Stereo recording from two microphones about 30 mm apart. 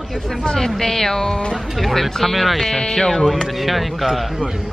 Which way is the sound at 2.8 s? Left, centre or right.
Left.